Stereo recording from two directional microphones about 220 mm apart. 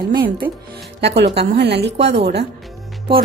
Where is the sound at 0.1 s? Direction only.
40° right (ahead or behind).